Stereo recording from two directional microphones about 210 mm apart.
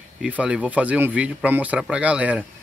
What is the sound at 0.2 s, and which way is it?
Speech, 5° right (ahead or behind).